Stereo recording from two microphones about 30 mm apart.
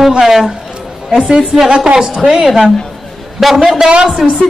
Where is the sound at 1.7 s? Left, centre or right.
Right.